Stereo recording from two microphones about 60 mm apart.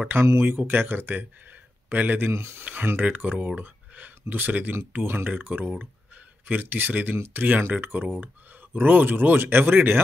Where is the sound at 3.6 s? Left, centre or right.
Right.